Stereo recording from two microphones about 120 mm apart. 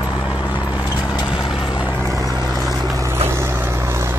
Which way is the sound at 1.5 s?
45° left (ahead or behind).